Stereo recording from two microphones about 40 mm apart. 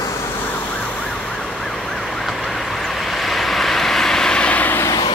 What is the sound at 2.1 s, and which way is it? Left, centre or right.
Vehicle, centre.